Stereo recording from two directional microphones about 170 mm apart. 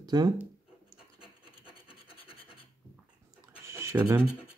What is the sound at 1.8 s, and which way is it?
Scratch, 30° left (ahead or behind).